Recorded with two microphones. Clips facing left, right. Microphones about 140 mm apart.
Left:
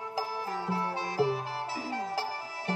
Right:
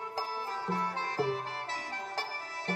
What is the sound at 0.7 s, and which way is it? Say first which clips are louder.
Music: even; 10° left (ahead or behind).